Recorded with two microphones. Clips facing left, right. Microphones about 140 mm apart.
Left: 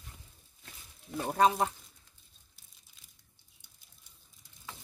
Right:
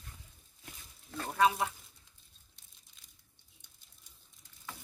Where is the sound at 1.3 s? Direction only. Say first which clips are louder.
Left 2 dB; 35° left (ahead or behind).